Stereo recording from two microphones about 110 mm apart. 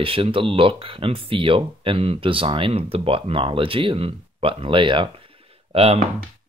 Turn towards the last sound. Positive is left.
turn(degrees=-65)  # may be behind; listen again after turning